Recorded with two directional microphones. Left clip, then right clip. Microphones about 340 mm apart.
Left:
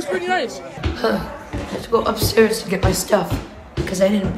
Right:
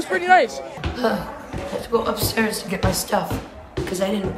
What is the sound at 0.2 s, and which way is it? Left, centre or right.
A woman's voice, centre.